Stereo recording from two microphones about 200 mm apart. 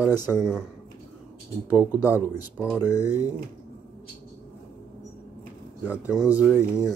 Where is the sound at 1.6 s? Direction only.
10° right (ahead or behind).